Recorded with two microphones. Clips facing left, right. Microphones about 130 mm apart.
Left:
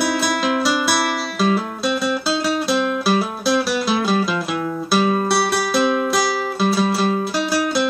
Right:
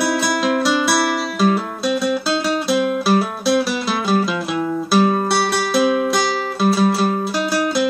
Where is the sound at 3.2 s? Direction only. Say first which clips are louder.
Right 2 dB; centre (ahead or behind).